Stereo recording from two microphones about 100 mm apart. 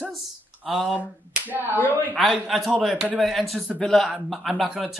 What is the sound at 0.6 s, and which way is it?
Speech, 5° right (ahead or behind).